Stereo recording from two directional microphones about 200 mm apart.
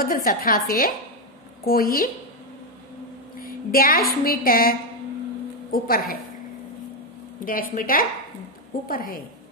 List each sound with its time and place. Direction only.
0.0 s a woman's voice: 45° left (ahead or behind)
3.3 s a woman's voice: 45° left (ahead or behind)
7.4 s a woman's voice: 45° left (ahead or behind)